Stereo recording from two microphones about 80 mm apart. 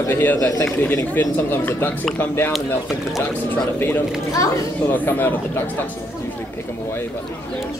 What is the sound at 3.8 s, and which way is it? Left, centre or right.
Speech, left.